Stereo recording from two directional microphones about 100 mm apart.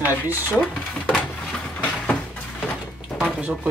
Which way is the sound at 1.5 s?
10° left (ahead or behind).